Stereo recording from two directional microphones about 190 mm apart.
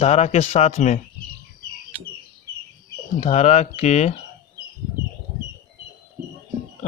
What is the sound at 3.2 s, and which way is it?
Speech, 35° left (ahead or behind).